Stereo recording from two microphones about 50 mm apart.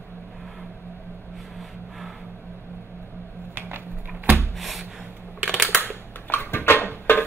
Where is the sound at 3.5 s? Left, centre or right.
Right.